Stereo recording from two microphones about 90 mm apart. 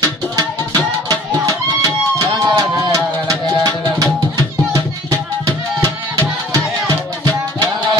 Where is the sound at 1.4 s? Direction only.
40° right (ahead or behind).